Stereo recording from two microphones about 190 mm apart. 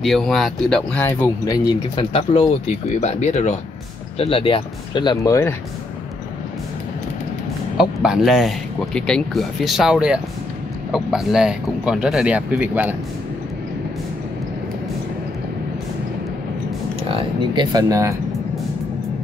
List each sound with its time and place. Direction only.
0.0 s speech: centre (ahead or behind); by 1.6 s 15° left (ahead or behind)
2.0 s speech: 30° left (ahead or behind)
7.7 s speech: 5° right (ahead or behind)
17.1 s speech: 25° right (ahead or behind)